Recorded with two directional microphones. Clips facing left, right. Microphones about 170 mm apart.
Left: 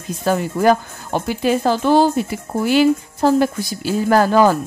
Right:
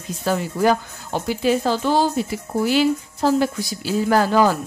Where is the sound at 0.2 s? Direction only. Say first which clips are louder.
Left 3 dB; 50° left (ahead or behind).